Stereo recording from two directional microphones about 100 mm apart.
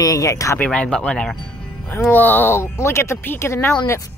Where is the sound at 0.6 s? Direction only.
10° left (ahead or behind).